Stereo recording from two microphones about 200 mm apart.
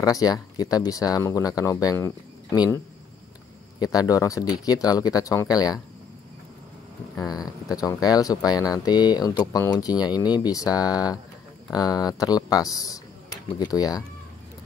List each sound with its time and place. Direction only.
0.0 s speech: 20° left (ahead or behind)
3.8 s speech: 20° left (ahead or behind)
7.2 s speech: 20° left (ahead or behind)